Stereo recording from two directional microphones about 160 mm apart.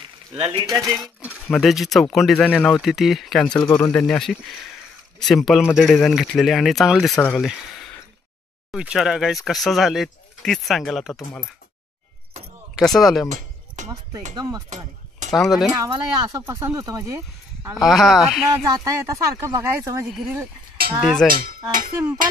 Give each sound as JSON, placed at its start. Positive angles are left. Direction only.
{"t": 0.0, "sound": "a sound", "side_deg": -35}
{"t": 0.7, "sound": "speech", "side_deg": -20}
{"t": 1.5, "sound": "speech", "side_deg": 0}
{"t": 8.7, "sound": "speech", "side_deg": -5}
{"t": 12.7, "sound": "speech", "side_deg": 0}
{"t": 13.3, "sound": "a sound", "side_deg": -50}
{"t": 14.3, "sound": "speech", "side_deg": -25}
{"t": 15.3, "sound": "speech", "side_deg": 0}
{"t": 15.7, "sound": "speech", "side_deg": -20}
{"t": 17.8, "sound": "speech", "side_deg": 0}
{"t": 18.7, "sound": "speech", "side_deg": -20}
{"t": 21.0, "sound": "speech", "side_deg": 0}
{"t": 21.9, "sound": "a sound", "side_deg": -15}